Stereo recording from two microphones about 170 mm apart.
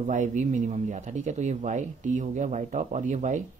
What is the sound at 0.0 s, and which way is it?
Speech, 45° right (ahead or behind).